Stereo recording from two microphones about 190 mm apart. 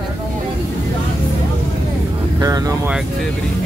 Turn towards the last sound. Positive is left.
turn(degrees=-20)  # may be behind; listen again after turning